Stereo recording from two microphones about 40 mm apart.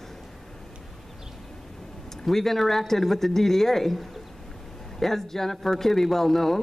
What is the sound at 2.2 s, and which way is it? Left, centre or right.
A man's voice, centre.